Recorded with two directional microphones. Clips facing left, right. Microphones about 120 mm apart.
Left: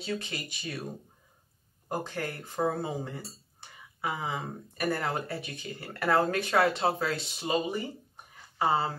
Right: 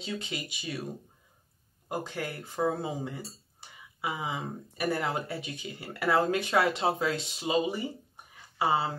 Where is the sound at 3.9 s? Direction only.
15° right (ahead or behind).